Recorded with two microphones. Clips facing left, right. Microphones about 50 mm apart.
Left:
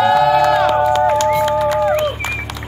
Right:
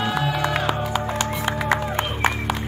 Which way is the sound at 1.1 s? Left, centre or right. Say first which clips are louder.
Left 10 dB; right.